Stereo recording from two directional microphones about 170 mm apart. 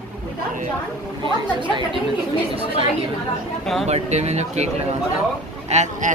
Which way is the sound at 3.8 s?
40° right (ahead or behind).